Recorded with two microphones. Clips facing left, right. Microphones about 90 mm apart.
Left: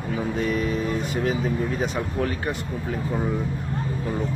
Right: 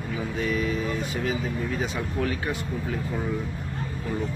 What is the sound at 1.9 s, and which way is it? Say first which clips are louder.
Speech: left 2 dB; 35° left (ahead or behind).